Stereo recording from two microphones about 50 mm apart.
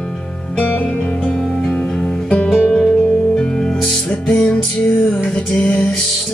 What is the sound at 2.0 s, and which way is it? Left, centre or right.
Music, left.